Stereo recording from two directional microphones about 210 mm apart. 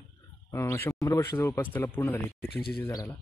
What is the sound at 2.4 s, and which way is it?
Speech, 50° left (ahead or behind).